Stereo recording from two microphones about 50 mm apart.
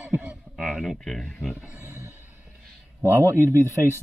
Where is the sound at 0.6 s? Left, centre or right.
Centre.